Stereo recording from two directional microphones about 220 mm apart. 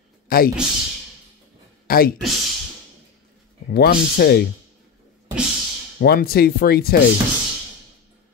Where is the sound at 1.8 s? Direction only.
40° left (ahead or behind).